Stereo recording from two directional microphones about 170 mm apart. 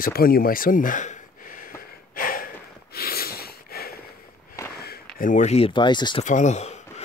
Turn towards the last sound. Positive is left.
turn(degrees=40)  # may be behind; listen again after turning